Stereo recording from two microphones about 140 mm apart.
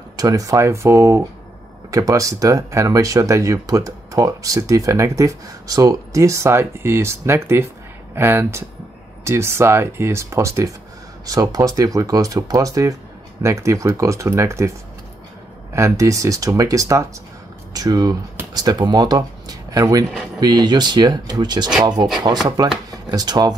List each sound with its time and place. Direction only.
0.1 s speech: 25° right (ahead or behind)
15.7 s speech: 20° right (ahead or behind)